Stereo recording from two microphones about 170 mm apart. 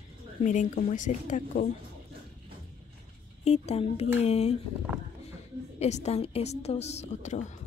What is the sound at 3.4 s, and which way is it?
A woman's voice, 40° left (ahead or behind).